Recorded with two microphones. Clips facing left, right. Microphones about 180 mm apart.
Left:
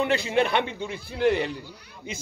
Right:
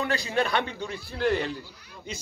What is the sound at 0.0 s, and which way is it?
A man's voice, 20° left (ahead or behind).